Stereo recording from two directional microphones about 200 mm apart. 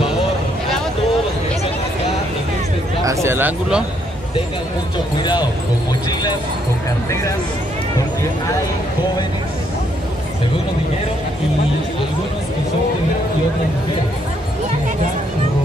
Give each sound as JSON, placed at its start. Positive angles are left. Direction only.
{"t": 3.1, "sound": "speech", "side_deg": -15}
{"t": 5.2, "sound": "speech", "side_deg": 20}